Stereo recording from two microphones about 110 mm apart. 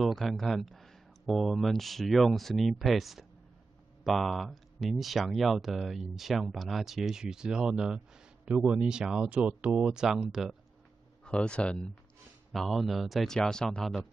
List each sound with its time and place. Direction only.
0.0 s speech: centre (ahead or behind)
11.2 s speech: 10° left (ahead or behind)